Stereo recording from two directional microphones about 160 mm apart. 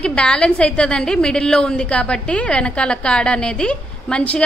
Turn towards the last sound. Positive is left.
turn(degrees=5)  # may be behind; listen again after turning